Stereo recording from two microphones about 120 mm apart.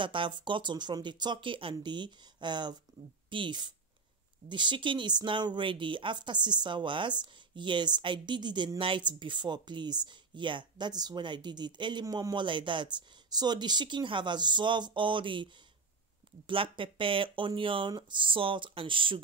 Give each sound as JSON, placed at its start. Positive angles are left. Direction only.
{"t": 0.0, "sound": "speech", "side_deg": -45}